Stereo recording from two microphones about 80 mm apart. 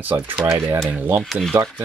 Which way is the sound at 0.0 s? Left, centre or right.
Right.